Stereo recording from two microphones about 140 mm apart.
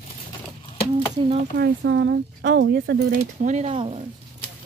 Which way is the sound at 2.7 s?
90° right.